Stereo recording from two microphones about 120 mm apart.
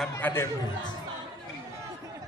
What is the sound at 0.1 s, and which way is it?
Speech, 20° left (ahead or behind).